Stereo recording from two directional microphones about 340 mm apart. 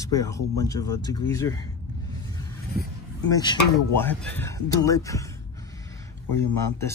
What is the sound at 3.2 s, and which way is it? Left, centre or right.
Speech, centre.